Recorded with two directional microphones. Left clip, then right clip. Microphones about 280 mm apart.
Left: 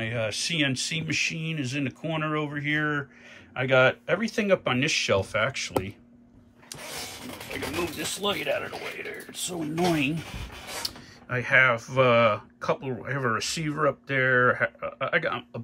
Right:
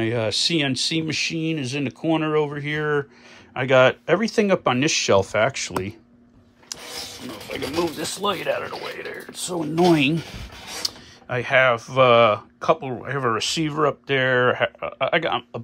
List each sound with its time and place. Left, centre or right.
0.0 s speech: centre
7.5 s speech: right
10.8 s speech: centre